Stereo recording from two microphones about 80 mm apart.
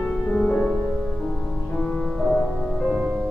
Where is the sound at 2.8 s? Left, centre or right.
Centre.